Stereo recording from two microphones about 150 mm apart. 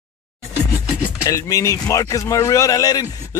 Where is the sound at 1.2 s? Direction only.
20° left (ahead or behind).